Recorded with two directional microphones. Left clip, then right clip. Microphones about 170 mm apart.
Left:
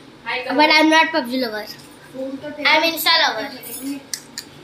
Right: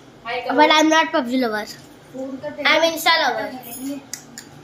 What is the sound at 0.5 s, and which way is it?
Speech, 15° right (ahead or behind).